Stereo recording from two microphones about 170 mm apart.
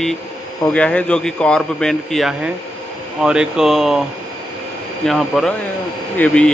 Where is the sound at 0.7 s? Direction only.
5° left (ahead or behind).